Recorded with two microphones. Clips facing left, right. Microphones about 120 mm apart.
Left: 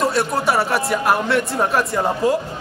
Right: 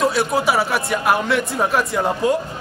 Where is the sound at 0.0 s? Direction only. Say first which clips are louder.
Right 1 dB; centre (ahead or behind).